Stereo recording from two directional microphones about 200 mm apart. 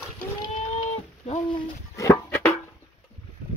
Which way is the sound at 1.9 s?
15° left (ahead or behind).